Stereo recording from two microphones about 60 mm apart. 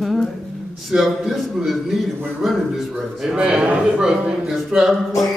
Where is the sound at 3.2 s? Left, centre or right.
Centre.